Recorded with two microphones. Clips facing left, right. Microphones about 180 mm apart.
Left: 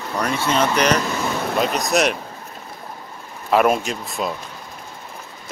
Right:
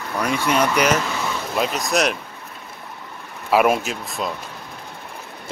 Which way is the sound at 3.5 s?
5° right (ahead or behind).